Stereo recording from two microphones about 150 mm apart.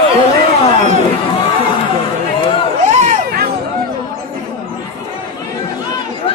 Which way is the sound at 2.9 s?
50° right (ahead or behind).